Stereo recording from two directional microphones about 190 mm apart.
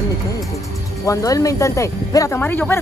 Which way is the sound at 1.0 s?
15° left (ahead or behind).